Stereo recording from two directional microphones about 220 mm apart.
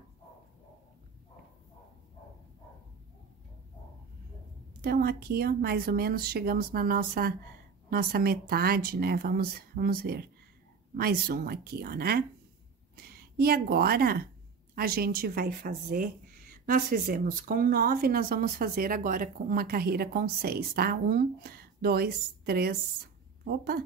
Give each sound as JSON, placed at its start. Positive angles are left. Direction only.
{"t": 4.8, "sound": "speech", "side_deg": -45}